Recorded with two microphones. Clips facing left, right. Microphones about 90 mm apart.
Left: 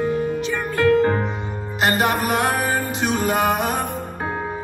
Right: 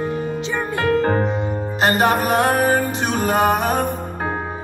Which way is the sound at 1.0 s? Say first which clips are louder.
Right 1 dB; 35° right (ahead or behind).